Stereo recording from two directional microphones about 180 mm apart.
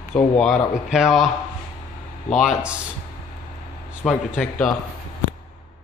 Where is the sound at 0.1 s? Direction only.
5° left (ahead or behind).